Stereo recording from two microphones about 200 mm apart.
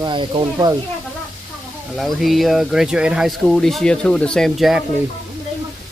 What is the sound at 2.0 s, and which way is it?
Speech, centre (ahead or behind).